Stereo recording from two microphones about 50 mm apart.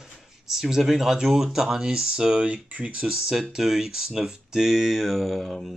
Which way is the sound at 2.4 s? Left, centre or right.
Right.